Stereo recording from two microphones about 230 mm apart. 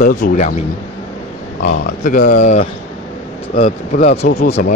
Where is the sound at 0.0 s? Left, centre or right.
Left.